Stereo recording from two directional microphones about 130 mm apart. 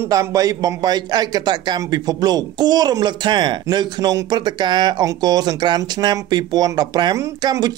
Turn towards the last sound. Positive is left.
turn(degrees=-25)  # may be behind; listen again after turning